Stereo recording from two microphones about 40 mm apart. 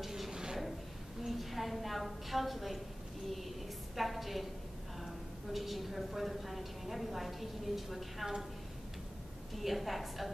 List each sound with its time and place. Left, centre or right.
0.0 s dishes: centre
0.3 s dishes: centre
1.2 s a woman's voice: centre
9.6 s a woman's voice: centre